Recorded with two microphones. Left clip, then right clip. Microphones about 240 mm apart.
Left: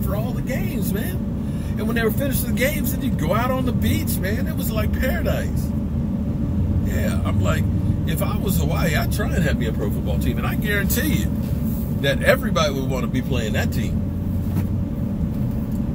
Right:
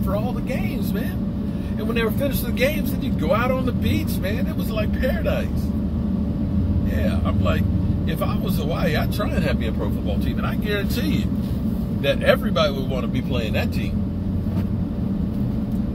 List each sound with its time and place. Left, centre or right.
12.1 s speech: left